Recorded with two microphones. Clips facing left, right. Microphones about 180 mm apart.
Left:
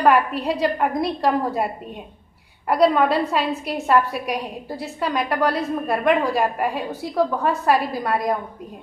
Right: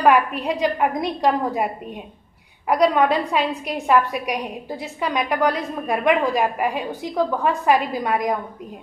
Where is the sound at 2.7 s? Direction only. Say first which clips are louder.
Even; 5° left (ahead or behind).